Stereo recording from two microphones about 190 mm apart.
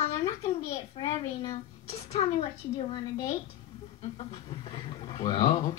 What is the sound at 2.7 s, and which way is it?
Speech, 20° left (ahead or behind).